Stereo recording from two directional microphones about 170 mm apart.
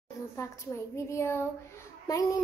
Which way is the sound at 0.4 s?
15° left (ahead or behind).